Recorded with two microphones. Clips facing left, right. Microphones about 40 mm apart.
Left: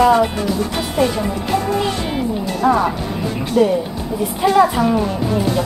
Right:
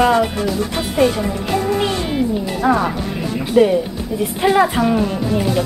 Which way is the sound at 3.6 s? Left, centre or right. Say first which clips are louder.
Right 2 dB; centre.